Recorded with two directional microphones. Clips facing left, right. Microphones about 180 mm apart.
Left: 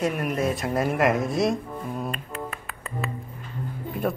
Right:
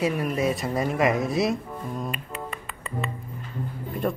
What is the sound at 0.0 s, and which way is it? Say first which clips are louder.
Speech: right 1 dB; centre (ahead or behind).